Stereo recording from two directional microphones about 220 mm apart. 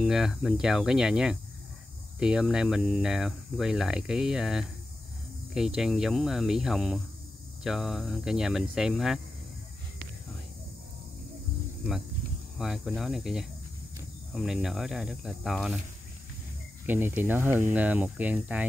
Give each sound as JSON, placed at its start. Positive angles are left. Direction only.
{"t": 0.0, "sound": "speech", "side_deg": 0}
{"t": 5.8, "sound": "speech", "side_deg": 0}
{"t": 12.5, "sound": "speech", "side_deg": 0}
{"t": 16.8, "sound": "speech", "side_deg": -10}